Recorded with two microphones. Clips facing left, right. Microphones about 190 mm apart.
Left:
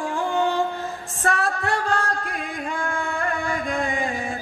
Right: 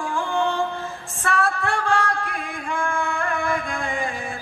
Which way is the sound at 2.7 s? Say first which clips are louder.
Right 4 dB; 40° left (ahead or behind).